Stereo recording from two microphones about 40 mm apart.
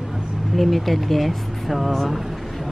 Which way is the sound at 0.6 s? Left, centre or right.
Centre.